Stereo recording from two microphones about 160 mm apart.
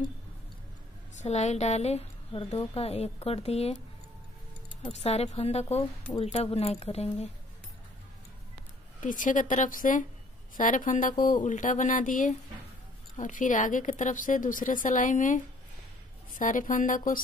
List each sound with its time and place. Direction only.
1.1 s a woman's voice: 45° left (ahead or behind)
4.9 s speech: 40° left (ahead or behind)
9.0 s a woman's voice: 55° left (ahead or behind)